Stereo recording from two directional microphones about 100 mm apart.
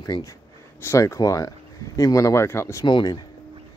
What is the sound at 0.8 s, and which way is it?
Speech, 30° left (ahead or behind).